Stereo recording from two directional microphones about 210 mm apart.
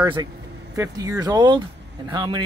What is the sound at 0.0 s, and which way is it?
Speech, 20° right (ahead or behind).